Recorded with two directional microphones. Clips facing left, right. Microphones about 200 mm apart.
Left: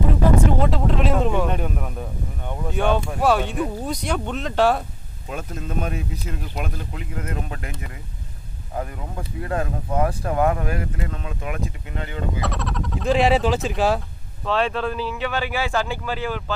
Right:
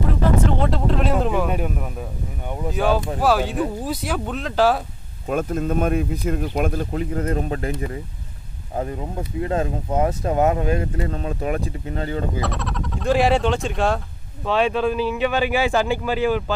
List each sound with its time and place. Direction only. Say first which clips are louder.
0.5 s speech: even; centre (ahead or behind)
5.3 s speech: right 8 dB; 50° right (ahead or behind); by 8.0 s 35° right (ahead or behind)
9.4 s speech: right 3 dB; 25° right (ahead or behind)
11.1 s speech: right 6 dB; 35° right (ahead or behind)
12.4 s speech: right 1 dB; centre (ahead or behind)
14.4 s speech: right 3 dB; 10° right (ahead or behind)